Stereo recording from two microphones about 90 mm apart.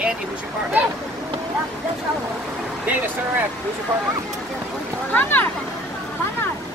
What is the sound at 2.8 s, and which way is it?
Speech, 20° right (ahead or behind).